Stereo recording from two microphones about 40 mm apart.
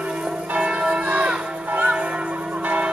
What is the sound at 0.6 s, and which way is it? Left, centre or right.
Church bell, right.